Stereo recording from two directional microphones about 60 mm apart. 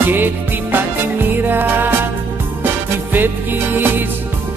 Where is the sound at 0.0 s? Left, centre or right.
Right.